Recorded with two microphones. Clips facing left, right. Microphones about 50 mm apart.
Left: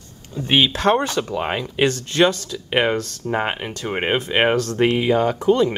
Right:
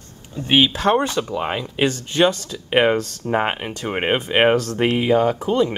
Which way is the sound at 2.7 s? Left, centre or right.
Centre.